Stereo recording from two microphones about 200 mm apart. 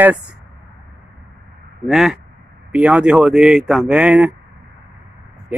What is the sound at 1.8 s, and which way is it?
Speech, centre (ahead or behind).